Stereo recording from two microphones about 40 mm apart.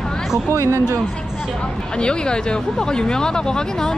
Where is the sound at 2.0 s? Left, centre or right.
Left.